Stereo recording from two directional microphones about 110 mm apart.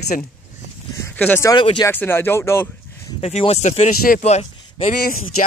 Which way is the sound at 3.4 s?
80° left.